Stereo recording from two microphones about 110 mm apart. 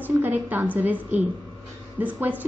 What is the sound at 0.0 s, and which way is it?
A woman's voice, 15° right (ahead or behind).